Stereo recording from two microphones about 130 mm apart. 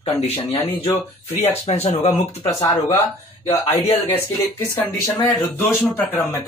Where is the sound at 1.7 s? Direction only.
55° left (ahead or behind).